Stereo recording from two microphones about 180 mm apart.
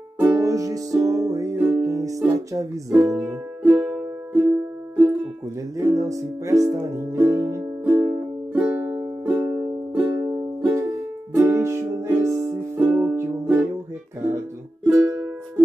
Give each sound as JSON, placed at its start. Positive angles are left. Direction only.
{"t": 0.2, "sound": "music", "side_deg": -15}
{"t": 14.9, "sound": "music", "side_deg": -15}